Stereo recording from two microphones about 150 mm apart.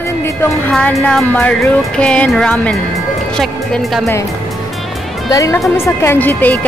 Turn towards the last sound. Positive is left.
turn(degrees=10)  # may be behind; listen again after turning